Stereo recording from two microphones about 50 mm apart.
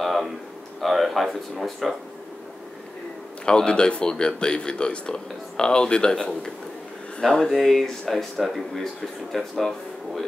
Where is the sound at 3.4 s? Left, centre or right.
Centre.